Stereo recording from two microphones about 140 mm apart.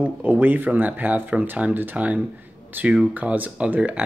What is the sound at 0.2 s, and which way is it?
Speech, 15° right (ahead or behind).